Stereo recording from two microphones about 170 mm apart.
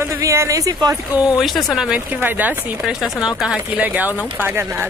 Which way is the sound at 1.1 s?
5° right (ahead or behind).